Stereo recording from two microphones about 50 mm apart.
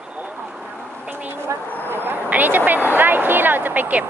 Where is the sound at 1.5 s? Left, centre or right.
Right.